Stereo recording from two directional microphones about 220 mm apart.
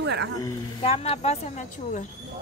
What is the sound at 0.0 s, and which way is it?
Speech, 55° right (ahead or behind).